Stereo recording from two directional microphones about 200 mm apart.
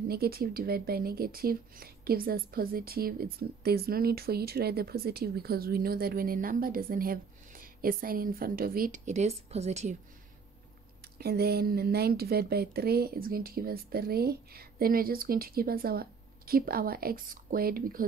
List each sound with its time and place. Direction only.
0.1 s speech: 50° right (ahead or behind); by 9.9 s 35° right (ahead or behind)
11.1 s speech: 50° right (ahead or behind)